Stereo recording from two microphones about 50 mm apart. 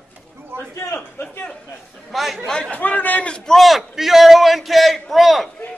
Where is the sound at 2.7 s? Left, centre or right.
Left.